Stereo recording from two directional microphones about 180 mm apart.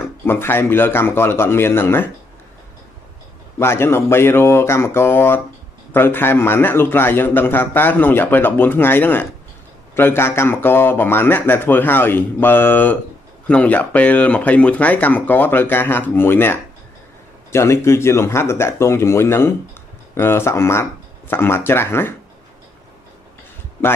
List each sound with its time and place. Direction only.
0.0 s a man's voice: 10° left (ahead or behind)
3.5 s a man's voice: 15° left (ahead or behind)